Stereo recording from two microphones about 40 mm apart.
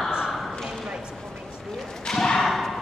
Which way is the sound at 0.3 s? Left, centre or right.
Centre.